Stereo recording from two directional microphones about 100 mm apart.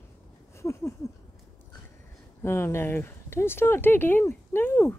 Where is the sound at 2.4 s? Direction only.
25° left (ahead or behind).